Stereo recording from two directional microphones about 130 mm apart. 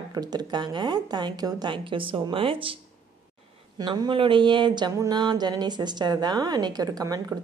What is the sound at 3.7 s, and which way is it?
A woman's voice, 35° right (ahead or behind).